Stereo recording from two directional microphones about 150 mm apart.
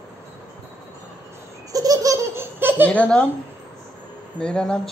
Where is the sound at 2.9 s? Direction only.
5° left (ahead or behind).